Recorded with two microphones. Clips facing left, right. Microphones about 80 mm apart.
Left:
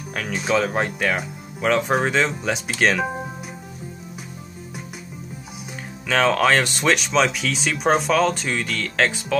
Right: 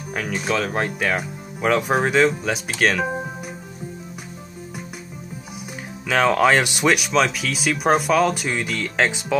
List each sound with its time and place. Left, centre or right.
0.1 s speech: centre
6.0 s speech: centre